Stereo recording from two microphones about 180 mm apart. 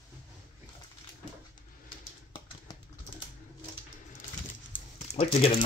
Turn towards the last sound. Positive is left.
turn(degrees=35)  # may be behind; listen again after turning